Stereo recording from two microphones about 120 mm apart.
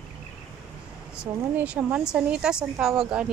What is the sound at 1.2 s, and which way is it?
A woman's voice, 10° right (ahead or behind).